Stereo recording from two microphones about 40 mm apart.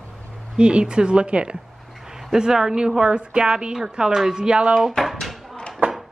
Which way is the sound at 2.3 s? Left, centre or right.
Centre.